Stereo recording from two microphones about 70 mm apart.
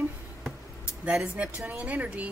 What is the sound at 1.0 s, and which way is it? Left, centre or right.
Speech, centre.